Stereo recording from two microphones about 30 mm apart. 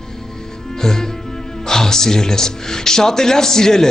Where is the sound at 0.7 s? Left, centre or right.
Centre.